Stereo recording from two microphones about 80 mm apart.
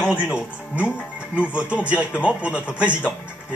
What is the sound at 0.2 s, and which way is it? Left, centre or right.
Speech, centre.